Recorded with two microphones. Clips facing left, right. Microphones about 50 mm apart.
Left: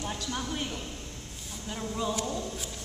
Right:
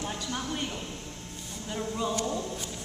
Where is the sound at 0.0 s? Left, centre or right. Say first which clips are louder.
Even; centre.